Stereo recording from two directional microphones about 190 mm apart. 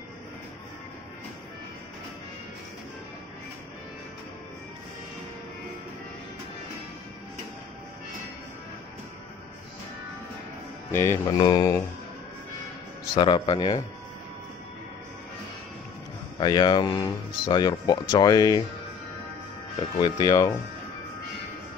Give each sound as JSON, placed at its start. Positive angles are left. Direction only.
{"t": 10.9, "sound": "speech", "side_deg": 15}
{"t": 13.1, "sound": "speech", "side_deg": 25}
{"t": 16.3, "sound": "speech", "side_deg": 25}
{"t": 20.0, "sound": "speech", "side_deg": 20}